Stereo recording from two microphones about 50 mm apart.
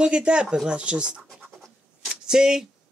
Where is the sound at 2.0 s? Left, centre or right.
Centre.